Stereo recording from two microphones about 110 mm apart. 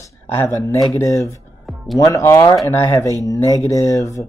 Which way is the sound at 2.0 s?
30° left (ahead or behind).